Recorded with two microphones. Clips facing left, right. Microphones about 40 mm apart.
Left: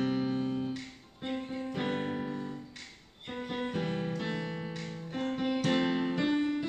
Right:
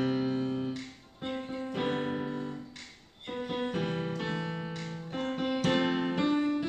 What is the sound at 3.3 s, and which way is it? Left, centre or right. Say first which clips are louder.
Music: right 2 dB; centre.